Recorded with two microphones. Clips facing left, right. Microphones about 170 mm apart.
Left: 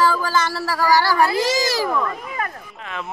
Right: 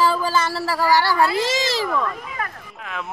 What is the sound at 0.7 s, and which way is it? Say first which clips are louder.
Speech: left 1 dB; 25° right (ahead or behind).